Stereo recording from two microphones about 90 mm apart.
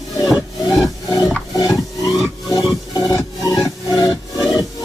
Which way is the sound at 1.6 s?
Centre (ahead or behind).